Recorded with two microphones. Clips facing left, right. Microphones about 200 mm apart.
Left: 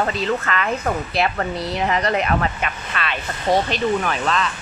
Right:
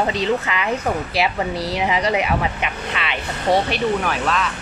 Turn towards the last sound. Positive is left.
turn(degrees=-5)  # may be behind; listen again after turning